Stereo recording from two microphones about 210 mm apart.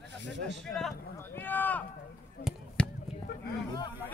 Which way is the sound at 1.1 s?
10° left (ahead or behind).